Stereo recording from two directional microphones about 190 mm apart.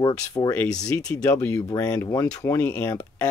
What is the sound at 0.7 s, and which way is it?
Speech, 5° left (ahead or behind).